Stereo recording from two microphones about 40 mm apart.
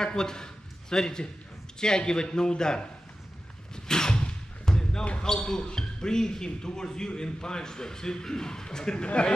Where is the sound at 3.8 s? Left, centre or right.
Centre.